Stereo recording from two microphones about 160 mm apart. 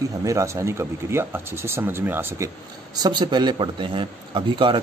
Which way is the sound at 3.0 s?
25° right (ahead or behind).